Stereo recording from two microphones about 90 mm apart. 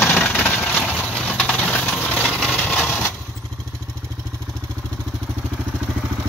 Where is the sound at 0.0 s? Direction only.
20° left (ahead or behind).